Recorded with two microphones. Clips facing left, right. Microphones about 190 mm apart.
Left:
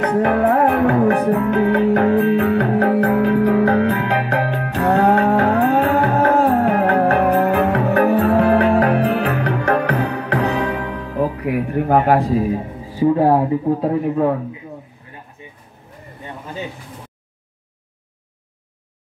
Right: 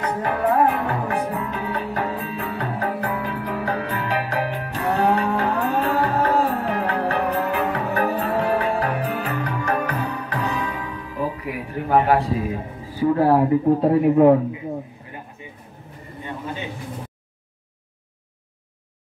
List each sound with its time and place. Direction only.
0.0 s music: 65° left (ahead or behind)
13.0 s speech: 20° left (ahead or behind)
14.0 s a man's voice: 15° right (ahead or behind)